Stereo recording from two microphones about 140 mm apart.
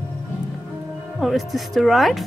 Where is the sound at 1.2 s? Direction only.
Centre (ahead or behind).